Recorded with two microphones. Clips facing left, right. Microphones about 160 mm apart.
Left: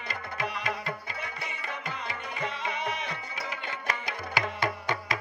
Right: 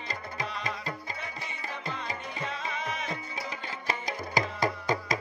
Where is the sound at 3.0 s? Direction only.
35° right (ahead or behind).